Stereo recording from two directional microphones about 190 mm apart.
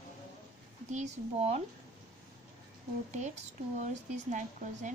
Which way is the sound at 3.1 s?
40° right (ahead or behind).